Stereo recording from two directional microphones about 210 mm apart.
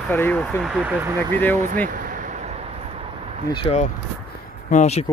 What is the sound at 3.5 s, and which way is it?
Speech, 25° left (ahead or behind).